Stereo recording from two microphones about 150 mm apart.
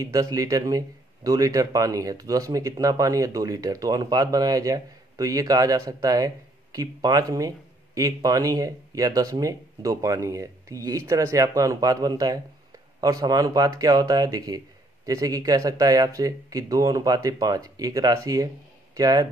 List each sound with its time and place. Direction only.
0.0 s speech: 25° right (ahead or behind)